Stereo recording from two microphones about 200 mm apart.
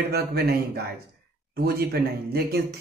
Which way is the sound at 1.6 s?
50° right (ahead or behind).